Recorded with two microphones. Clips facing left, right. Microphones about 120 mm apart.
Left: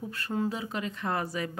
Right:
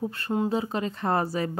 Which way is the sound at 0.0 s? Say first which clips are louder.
Right 4 dB; 25° right (ahead or behind).